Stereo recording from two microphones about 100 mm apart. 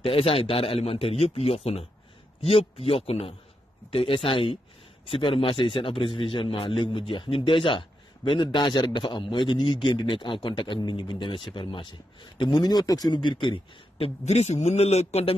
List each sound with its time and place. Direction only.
0.0 s a man's voice: 70° left (ahead or behind)
3.9 s a man's voice: 65° left (ahead or behind); by 15.3 s 90° left